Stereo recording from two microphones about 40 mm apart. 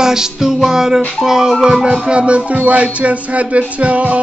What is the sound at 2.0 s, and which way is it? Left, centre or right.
Music, right.